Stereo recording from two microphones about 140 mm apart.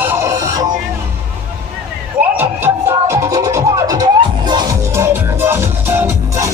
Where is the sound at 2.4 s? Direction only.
15° right (ahead or behind).